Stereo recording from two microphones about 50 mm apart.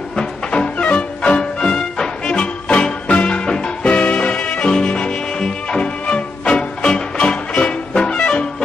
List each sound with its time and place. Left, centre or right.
0.1 s music: centre